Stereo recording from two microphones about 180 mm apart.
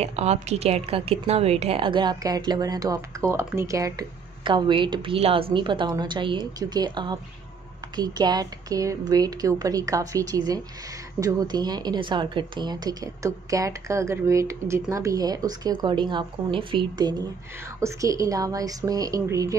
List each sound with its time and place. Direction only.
0.0 s speech: 35° right (ahead or behind)
17.7 s speech: 20° right (ahead or behind)